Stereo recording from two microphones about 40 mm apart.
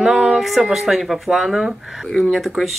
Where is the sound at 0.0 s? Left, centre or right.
Centre.